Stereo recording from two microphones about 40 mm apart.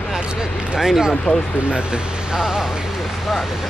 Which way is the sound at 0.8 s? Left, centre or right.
Centre.